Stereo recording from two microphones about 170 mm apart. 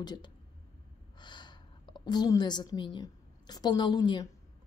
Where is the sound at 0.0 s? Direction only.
25° left (ahead or behind).